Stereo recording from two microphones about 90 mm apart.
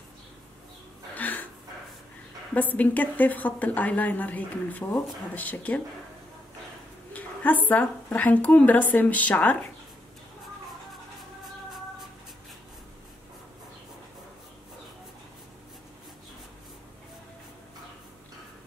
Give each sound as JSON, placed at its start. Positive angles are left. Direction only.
{"t": 1.1, "sound": "a sound", "side_deg": 20}
{"t": 2.5, "sound": "a woman's voice", "side_deg": 20}
{"t": 7.1, "sound": "a woman's voice", "side_deg": 20}
{"t": 11.4, "sound": "music", "side_deg": 0}